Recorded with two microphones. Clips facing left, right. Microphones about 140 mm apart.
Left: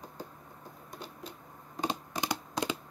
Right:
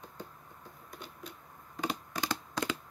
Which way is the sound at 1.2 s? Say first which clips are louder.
Left 2 dB; 25° left (ahead or behind).